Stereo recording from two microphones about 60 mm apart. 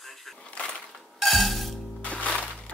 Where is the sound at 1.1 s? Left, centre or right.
Centre.